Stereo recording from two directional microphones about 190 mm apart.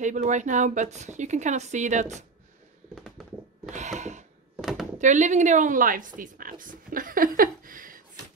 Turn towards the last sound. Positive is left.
turn(degrees=-45)  # may be behind; listen again after turning